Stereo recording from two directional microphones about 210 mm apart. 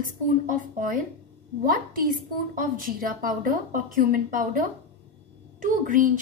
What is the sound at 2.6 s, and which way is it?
A woman's voice, 40° right (ahead or behind).